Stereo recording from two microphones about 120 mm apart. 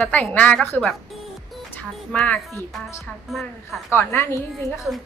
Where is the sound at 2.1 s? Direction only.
10° left (ahead or behind).